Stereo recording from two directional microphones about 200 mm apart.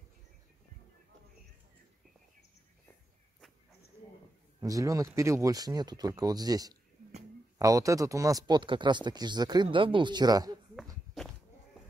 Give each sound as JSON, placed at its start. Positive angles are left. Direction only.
{"t": 4.6, "sound": "speech", "side_deg": -15}
{"t": 11.2, "sound": "goat", "side_deg": 0}